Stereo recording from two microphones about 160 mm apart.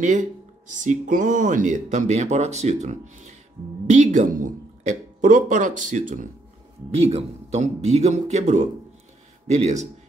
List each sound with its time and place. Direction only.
0.0 s speech: 50° right (ahead or behind)
6.9 s speech: 40° right (ahead or behind)